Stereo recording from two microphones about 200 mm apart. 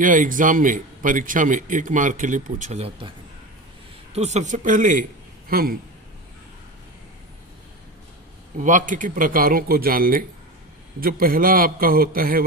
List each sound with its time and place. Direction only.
0.0 s a man's voice: 40° right (ahead or behind)
4.1 s a man's voice: 35° right (ahead or behind)
8.5 s speech: 40° right (ahead or behind)